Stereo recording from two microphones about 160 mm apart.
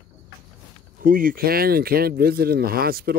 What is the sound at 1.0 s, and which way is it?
Speech, 60° right (ahead or behind).